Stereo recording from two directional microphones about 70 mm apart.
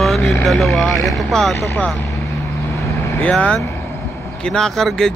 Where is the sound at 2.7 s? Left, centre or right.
Left.